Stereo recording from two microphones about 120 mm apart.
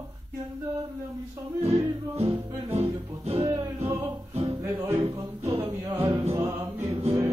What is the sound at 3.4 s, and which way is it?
Music, 25° right (ahead or behind).